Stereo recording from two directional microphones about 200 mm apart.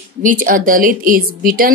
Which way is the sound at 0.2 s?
40° right (ahead or behind).